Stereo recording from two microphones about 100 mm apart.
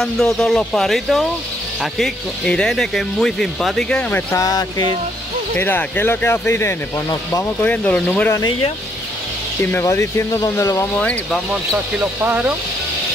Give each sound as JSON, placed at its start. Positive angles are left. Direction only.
{"t": 0.0, "sound": "speech", "side_deg": 5}
{"t": 4.4, "sound": "speech", "side_deg": 40}
{"t": 5.6, "sound": "speech", "side_deg": 20}
{"t": 7.6, "sound": "speech", "side_deg": 15}
{"t": 9.6, "sound": "speech", "side_deg": 25}
{"t": 11.0, "sound": "speech", "side_deg": 10}
{"t": 12.2, "sound": "speech", "side_deg": -15}